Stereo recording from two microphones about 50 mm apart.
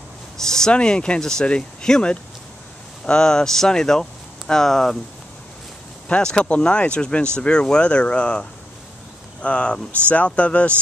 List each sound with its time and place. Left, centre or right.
0.4 s speech: centre
6.0 s speech: left